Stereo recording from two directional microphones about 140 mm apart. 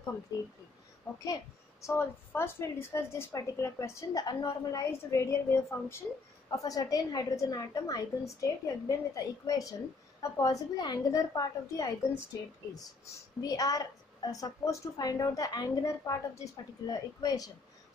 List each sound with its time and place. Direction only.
1.2 s a woman's voice: 25° left (ahead or behind)